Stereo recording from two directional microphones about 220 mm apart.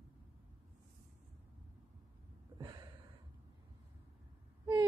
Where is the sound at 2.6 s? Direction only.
15° right (ahead or behind).